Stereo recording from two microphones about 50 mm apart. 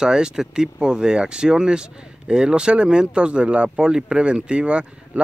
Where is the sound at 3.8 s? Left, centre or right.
Centre.